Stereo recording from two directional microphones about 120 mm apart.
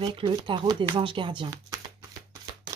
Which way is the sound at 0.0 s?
45° right (ahead or behind).